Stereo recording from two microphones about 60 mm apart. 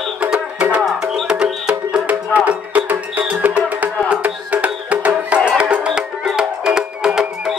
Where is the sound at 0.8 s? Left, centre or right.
Centre.